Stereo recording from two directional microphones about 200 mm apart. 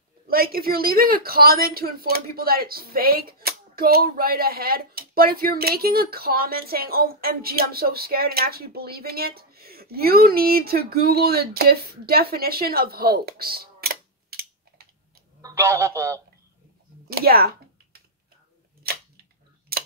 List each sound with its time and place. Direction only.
0.3 s speech: 50° right (ahead or behind)
15.4 s speech: 15° right (ahead or behind)
17.1 s typing: 50° right (ahead or behind)
18.8 s camera: 50° right (ahead or behind)